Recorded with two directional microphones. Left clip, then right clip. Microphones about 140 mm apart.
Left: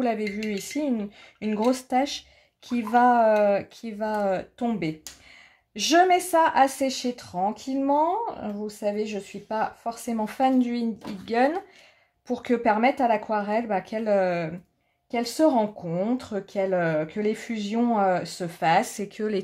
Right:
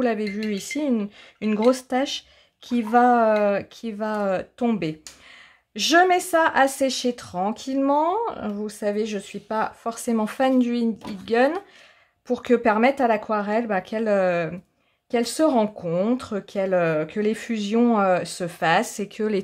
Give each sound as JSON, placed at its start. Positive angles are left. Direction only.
{"t": 0.4, "sound": "speech", "side_deg": -40}
{"t": 11.0, "sound": "speech", "side_deg": -30}